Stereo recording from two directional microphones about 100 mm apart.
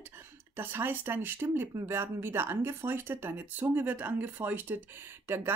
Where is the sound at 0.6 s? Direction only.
20° right (ahead or behind).